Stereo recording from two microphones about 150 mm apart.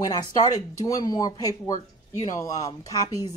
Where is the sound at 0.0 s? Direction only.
25° left (ahead or behind).